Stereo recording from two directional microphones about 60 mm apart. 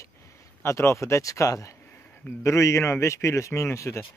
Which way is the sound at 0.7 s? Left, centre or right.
Left.